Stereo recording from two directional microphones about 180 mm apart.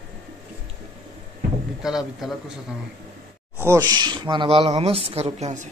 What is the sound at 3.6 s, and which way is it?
A woman's voice, 20° right (ahead or behind).